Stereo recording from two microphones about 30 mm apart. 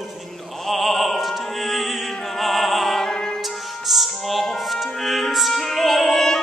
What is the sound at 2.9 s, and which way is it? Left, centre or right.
Music, left.